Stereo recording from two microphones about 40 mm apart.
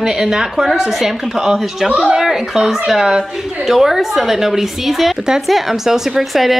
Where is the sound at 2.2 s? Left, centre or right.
Centre.